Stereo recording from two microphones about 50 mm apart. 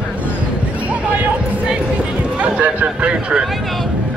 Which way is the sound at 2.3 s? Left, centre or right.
Right.